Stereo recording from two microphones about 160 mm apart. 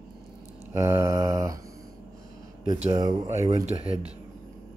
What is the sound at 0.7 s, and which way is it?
Mantra, 15° right (ahead or behind).